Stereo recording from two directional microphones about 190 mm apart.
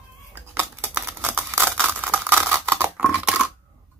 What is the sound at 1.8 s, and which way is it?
Tearing, 10° right (ahead or behind).